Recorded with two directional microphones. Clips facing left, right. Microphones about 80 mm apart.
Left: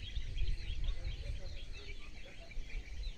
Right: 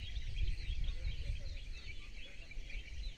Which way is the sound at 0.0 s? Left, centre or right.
Left.